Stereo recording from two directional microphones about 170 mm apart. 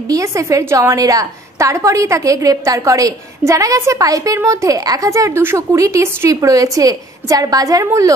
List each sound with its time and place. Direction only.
0.1 s a woman's voice: 20° right (ahead or behind)